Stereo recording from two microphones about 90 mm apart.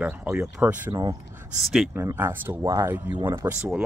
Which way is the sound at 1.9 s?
25° right (ahead or behind).